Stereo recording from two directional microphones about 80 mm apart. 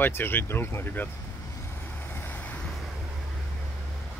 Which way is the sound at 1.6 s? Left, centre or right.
Left.